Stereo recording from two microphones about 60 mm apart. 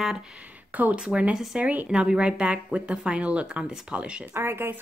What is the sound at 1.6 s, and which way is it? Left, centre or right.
Speech, right.